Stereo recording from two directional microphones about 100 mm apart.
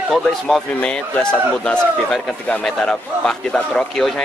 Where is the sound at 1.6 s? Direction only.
10° left (ahead or behind).